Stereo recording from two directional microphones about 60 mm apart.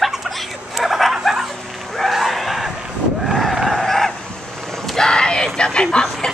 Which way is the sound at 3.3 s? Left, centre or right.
Centre.